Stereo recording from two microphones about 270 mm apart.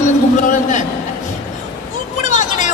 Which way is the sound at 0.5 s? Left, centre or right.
Left.